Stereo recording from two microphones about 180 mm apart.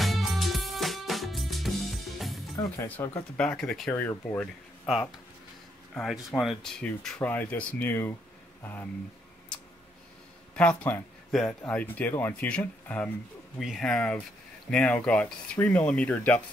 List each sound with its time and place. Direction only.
0.0 s music: centre (ahead or behind)
2.5 s speech: 15° left (ahead or behind)
3.3 s speech: 5° left (ahead or behind)
5.9 s speech: 5° left (ahead or behind)
10.5 s speech: 5° left (ahead or behind)